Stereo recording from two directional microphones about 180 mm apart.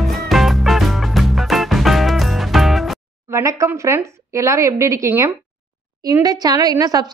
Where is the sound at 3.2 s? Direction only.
15° right (ahead or behind).